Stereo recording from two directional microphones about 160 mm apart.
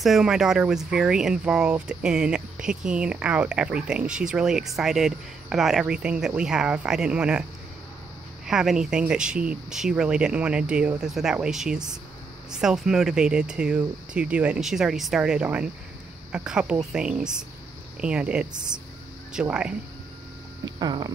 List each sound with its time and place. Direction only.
0.0 s speech: 5° right (ahead or behind)
8.5 s speech: 5° right (ahead or behind)
20.8 s a sound: 25° right (ahead or behind)